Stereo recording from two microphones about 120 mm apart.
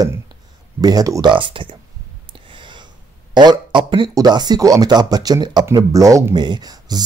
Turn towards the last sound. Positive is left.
turn(degrees=-35)  # may be behind; listen again after turning